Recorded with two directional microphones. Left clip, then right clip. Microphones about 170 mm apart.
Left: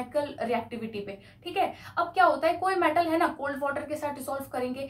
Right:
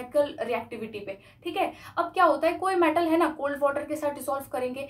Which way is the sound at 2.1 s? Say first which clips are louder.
Right 1 dB; 30° right (ahead or behind).